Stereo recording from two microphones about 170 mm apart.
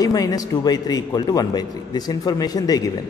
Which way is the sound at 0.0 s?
20° left (ahead or behind).